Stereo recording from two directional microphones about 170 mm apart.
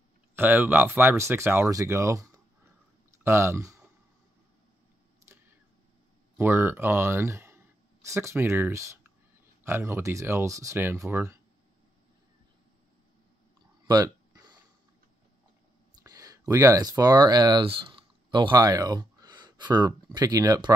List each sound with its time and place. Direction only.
0.4 s speech: 10° right (ahead or behind)
6.3 s speech: 15° right (ahead or behind)
13.8 s a sound: 25° right (ahead or behind)
16.0 s speech: 20° right (ahead or behind)